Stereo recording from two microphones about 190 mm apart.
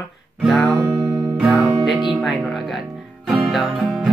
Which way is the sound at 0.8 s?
15° right (ahead or behind).